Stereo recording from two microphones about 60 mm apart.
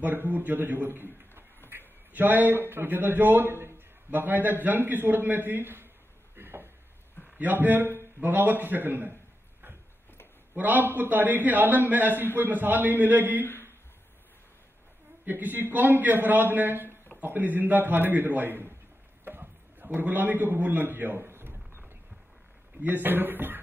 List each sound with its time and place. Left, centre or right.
0.0 s a man's voice: right
6.3 s a sound: right
7.3 s a man's voice: right
10.5 s a man's voice: right
13.4 s speech: left
15.2 s a man's voice: right
19.2 s a sound: right
22.8 s a man's voice: right